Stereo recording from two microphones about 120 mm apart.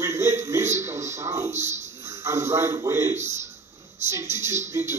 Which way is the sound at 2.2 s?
25° right (ahead or behind).